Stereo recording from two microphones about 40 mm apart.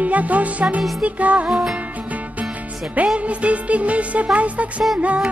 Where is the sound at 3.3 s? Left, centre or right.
Right.